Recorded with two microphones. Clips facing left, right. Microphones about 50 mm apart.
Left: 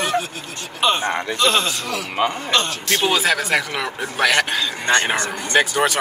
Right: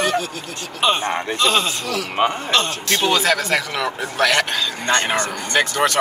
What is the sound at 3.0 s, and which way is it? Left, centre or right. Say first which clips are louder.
Speech: right 1 dB; centre.